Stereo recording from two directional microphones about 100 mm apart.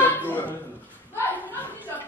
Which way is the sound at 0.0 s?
15° left (ahead or behind).